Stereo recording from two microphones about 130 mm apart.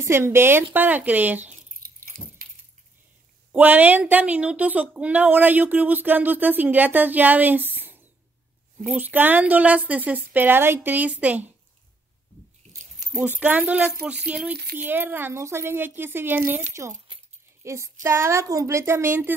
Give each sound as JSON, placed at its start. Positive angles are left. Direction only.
{"t": 0.0, "sound": "a woman's voice", "side_deg": -20}
{"t": 1.8, "sound": "a sound", "side_deg": -90}
{"t": 3.5, "sound": "a woman's voice", "side_deg": -10}
{"t": 13.3, "sound": "a woman's voice", "side_deg": -10}
{"t": 17.1, "sound": "keys jangling", "side_deg": -40}
{"t": 17.6, "sound": "a woman's voice", "side_deg": -20}